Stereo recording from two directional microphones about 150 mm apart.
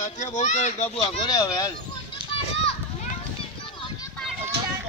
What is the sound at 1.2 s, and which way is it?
Speech, 25° left (ahead or behind).